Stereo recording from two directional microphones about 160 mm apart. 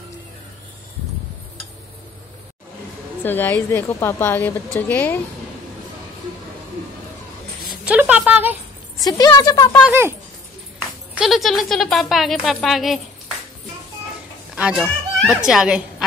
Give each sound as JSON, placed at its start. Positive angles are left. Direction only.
{"t": 3.3, "sound": "a woman's voice", "side_deg": 10}
{"t": 7.8, "sound": "a sound", "side_deg": -10}
{"t": 9.0, "sound": "speech", "side_deg": 25}
{"t": 11.1, "sound": "speech", "side_deg": 0}
{"t": 14.5, "sound": "a sound", "side_deg": -5}
{"t": 14.8, "sound": "speech", "side_deg": -5}